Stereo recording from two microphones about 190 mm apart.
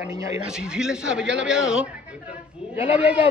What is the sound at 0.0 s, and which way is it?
Speech, 15° right (ahead or behind).